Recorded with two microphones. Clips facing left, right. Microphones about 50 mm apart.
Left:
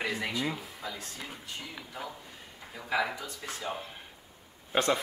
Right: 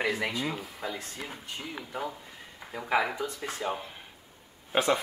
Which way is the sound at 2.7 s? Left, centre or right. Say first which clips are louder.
Right 3 dB; right.